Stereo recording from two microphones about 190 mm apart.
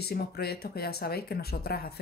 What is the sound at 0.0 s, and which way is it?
Speech, 55° left (ahead or behind).